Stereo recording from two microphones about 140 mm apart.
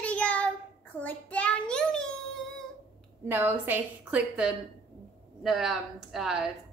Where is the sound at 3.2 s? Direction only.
15° right (ahead or behind).